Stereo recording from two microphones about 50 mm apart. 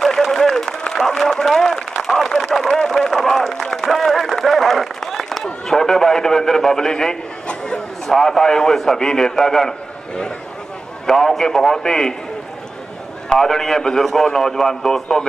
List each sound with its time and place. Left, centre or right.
0.0 s applause: centre
0.9 s a sound: centre
2.5 s run: centre
11.1 s a man's voice: centre
13.3 s a man's voice: centre